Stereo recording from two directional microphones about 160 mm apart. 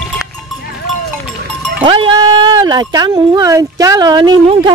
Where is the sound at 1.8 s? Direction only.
30° right (ahead or behind).